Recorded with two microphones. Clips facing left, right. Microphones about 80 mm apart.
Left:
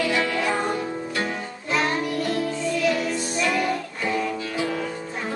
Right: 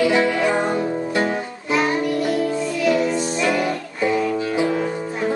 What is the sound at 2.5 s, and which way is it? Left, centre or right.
Music, centre.